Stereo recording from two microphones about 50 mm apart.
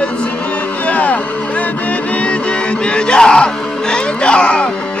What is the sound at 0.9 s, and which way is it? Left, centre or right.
Speech, left.